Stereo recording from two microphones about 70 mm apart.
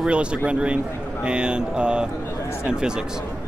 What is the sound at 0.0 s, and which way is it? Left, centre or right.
Speech, centre.